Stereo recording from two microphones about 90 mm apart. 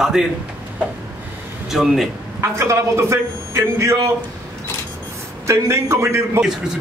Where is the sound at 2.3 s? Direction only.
30° right (ahead or behind).